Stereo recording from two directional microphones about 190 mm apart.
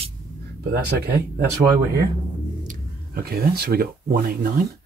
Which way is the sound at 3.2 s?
55° right (ahead or behind).